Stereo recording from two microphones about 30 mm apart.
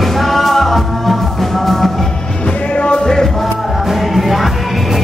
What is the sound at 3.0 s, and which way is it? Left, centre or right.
Music, centre.